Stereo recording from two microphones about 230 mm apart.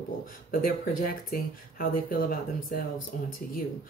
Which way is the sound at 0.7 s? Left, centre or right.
Left.